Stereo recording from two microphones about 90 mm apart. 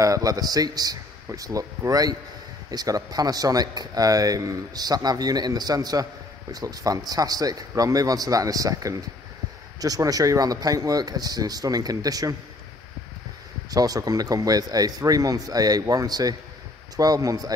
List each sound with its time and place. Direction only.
0.0 s a man's voice: 40° right (ahead or behind)
13.7 s speech: 45° right (ahead or behind)